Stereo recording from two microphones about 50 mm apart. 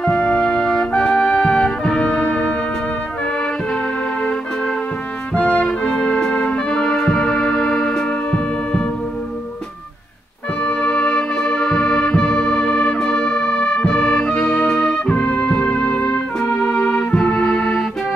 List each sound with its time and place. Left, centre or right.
0.0 s music: centre
5.3 s music: left
10.6 s music: left
16.6 s music: centre